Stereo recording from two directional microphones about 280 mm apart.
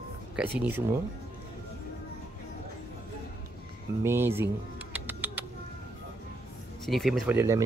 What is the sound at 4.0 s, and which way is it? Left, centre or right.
Speech, centre.